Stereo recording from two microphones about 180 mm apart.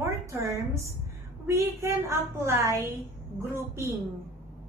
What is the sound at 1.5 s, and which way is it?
A woman's voice, 15° right (ahead or behind).